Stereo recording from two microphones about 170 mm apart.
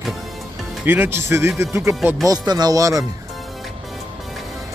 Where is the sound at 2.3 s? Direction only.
25° right (ahead or behind).